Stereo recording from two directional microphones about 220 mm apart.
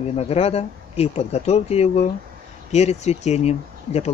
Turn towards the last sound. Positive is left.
turn(degrees=30)  # may be behind; listen again after turning